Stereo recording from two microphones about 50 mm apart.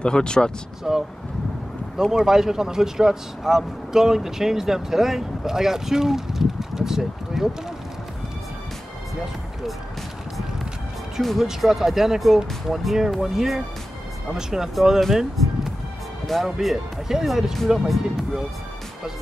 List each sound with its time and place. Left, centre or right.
0.0 s speech: centre
0.8 s speech: centre
9.2 s speech: centre
11.1 s speech: centre